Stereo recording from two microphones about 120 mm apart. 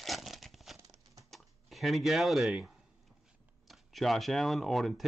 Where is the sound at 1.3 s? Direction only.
Centre (ahead or behind).